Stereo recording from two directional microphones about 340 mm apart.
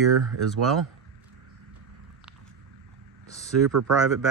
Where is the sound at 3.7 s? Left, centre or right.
Right.